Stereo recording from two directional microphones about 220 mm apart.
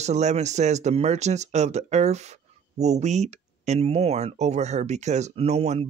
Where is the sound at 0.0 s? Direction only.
30° right (ahead or behind).